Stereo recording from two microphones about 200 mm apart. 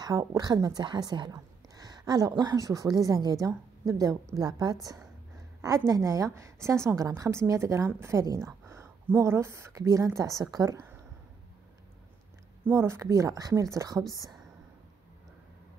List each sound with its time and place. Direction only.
0.0 s a woman's voice: 15° right (ahead or behind)
12.6 s a woman's voice: 15° right (ahead or behind)